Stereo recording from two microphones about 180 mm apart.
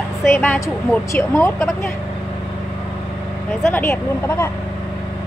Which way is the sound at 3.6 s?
15° left (ahead or behind).